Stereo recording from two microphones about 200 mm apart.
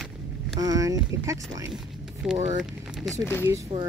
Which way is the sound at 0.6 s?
15° right (ahead or behind).